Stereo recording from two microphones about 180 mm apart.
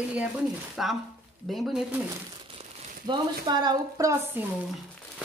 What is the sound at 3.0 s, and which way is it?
Speech, 25° right (ahead or behind).